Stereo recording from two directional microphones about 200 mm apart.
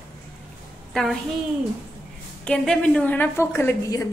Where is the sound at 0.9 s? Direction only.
Centre (ahead or behind).